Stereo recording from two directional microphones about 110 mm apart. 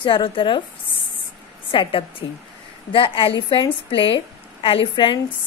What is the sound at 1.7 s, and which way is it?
A woman's voice, 50° left (ahead or behind).